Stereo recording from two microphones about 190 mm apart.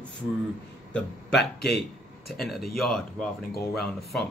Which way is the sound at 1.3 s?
60° left (ahead or behind).